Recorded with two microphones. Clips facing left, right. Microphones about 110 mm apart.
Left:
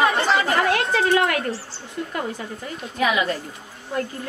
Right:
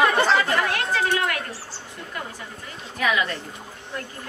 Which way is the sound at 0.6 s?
25° left (ahead or behind).